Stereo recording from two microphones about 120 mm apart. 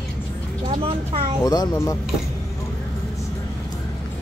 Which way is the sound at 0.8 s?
50° right (ahead or behind).